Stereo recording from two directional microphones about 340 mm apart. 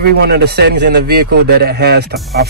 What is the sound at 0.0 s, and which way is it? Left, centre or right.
Speech, right.